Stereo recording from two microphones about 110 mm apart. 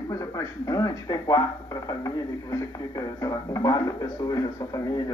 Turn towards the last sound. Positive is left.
turn(degrees=30)  # may be behind; listen again after turning